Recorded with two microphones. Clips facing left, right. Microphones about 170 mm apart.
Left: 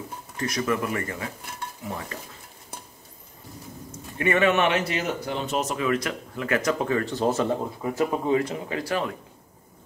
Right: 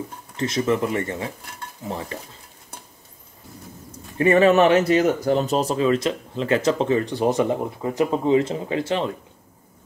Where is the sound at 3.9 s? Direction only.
35° right (ahead or behind).